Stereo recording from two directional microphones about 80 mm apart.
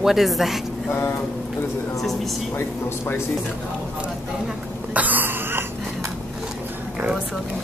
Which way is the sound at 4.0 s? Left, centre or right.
Centre.